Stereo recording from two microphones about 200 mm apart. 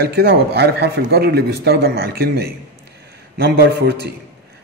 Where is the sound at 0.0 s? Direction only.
55° right (ahead or behind).